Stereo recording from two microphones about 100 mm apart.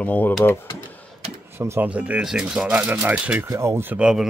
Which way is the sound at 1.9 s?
10° right (ahead or behind).